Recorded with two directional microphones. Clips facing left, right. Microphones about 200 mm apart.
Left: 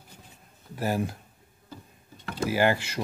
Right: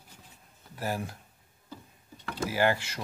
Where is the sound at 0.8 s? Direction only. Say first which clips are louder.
Left 5 dB; 20° left (ahead or behind).